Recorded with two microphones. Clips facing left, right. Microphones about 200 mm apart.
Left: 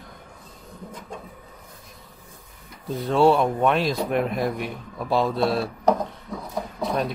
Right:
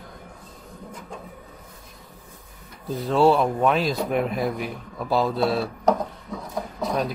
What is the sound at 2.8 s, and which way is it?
Speech, centre (ahead or behind).